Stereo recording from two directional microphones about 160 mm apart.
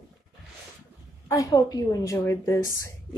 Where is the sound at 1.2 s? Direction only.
20° left (ahead or behind).